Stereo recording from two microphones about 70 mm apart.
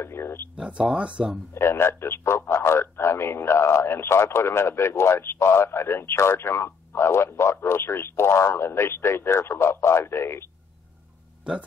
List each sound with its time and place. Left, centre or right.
0.0 s a man's voice: left
0.6 s speech: centre
1.5 s a man's voice: left